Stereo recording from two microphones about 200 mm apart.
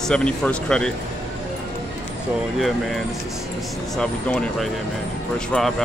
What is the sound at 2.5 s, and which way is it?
Speech, centre (ahead or behind).